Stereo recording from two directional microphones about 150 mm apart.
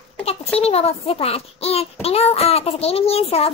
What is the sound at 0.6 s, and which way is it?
A child's voice, 40° left (ahead or behind).